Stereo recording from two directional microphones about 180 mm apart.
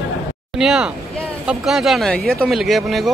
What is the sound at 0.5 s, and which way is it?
Speech, 5° right (ahead or behind).